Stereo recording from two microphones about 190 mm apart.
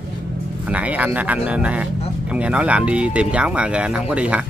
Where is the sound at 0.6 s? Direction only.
10° right (ahead or behind).